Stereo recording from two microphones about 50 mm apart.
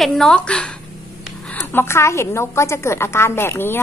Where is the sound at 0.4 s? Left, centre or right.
Left.